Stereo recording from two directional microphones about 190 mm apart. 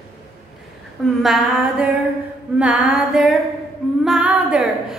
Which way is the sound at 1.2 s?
Centre (ahead or behind).